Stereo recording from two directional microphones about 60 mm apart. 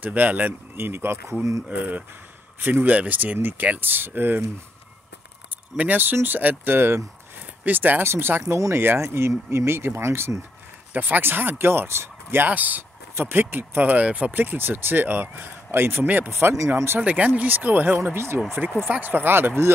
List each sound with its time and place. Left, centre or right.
0.0 s speech: right
1.7 s speech: right
5.8 s speech: right
10.9 s speech: right
12.4 s speech: right
14.3 s speech: right
16.5 s speech: right
17.0 s speech: right
18.9 s speech: right